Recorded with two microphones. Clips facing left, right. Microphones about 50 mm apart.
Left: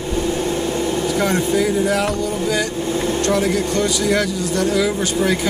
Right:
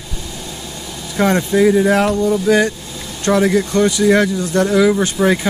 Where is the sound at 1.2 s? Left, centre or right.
Right.